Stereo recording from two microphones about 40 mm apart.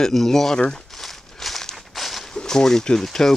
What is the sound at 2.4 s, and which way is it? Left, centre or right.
Speech, centre.